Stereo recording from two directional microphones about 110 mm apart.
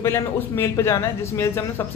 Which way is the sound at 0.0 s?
25° left (ahead or behind).